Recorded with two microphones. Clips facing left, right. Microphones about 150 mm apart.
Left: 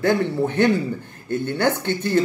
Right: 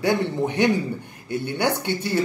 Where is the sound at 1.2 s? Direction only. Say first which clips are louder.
Left 3 dB; 50° left (ahead or behind).